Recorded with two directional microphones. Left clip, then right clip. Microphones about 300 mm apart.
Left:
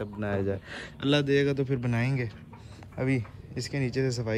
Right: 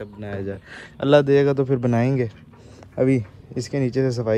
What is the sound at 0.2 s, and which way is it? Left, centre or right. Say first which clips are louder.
Speech: left 1 dB; left.